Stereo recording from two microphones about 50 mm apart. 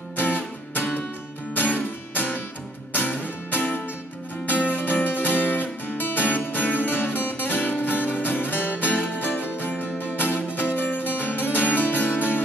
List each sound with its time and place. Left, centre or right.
0.2 s music: left